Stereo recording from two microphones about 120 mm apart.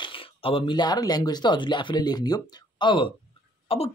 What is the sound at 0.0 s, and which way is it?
Speech, 45° left (ahead or behind).